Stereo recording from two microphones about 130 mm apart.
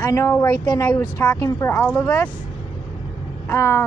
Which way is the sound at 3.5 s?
20° left (ahead or behind).